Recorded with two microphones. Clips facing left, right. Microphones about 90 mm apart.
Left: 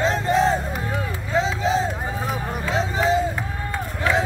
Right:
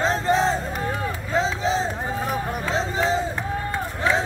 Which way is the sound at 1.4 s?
35° right (ahead or behind).